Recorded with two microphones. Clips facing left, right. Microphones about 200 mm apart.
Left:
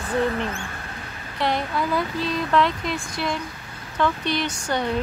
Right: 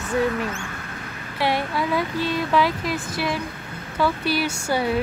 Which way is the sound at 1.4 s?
5° right (ahead or behind).